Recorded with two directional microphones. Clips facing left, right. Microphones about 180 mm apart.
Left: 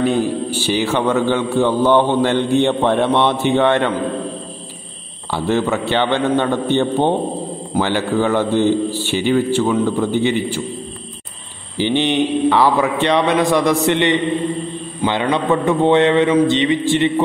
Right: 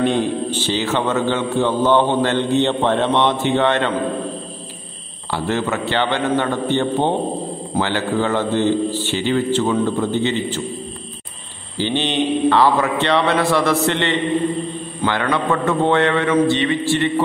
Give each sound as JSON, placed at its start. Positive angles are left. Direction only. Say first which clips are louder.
{"t": 0.0, "sound": "a man's voice", "louder": "left 1 dB", "side_deg": 5}
{"t": 5.3, "sound": "a man's voice", "louder": "left 3 dB", "side_deg": 15}
{"t": 11.8, "sound": "a man's voice", "louder": "left 3 dB", "side_deg": 15}